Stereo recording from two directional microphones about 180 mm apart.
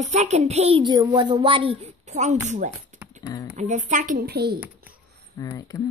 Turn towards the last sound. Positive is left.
turn(degrees=20)  # may be behind; listen again after turning